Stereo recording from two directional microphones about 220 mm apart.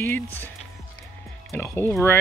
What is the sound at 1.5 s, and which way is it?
Speech, 10° left (ahead or behind).